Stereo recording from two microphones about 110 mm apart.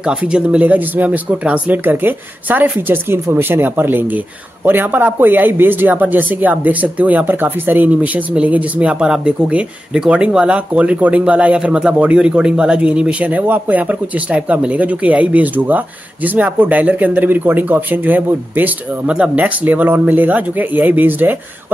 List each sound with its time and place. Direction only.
0.0 s a man's voice: 10° right (ahead or behind)